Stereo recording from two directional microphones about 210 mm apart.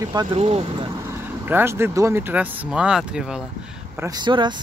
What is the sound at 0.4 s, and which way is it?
Speech, 30° right (ahead or behind).